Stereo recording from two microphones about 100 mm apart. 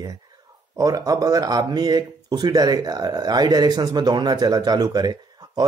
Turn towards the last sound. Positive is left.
turn(degrees=-45)  # may be behind; listen again after turning